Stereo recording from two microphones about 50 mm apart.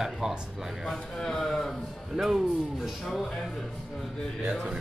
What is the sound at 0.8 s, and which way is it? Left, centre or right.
Speech, centre.